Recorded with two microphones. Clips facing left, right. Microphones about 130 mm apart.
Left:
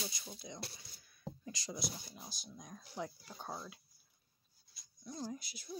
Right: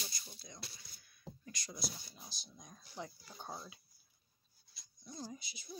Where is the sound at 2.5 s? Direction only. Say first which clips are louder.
Left 3 dB; 5° left (ahead or behind).